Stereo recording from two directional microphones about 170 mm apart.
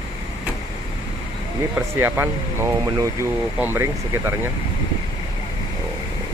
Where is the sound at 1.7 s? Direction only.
15° right (ahead or behind).